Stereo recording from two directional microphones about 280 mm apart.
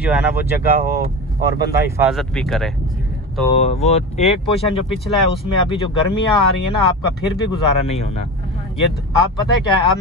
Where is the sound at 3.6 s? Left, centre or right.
Left.